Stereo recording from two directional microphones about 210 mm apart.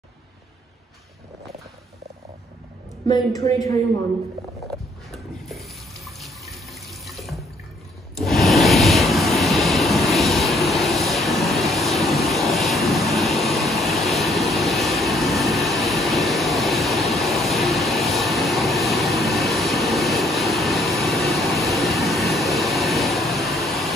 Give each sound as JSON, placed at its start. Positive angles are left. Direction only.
{"t": 3.1, "sound": "a woman's voice", "side_deg": 20}
{"t": 5.1, "sound": "sink", "side_deg": 0}
{"t": 8.2, "sound": "vehicle", "side_deg": 0}